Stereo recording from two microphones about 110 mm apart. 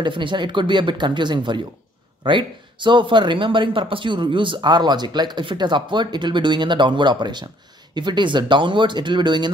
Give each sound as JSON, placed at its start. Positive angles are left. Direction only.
{"t": 0.0, "sound": "speech", "side_deg": -45}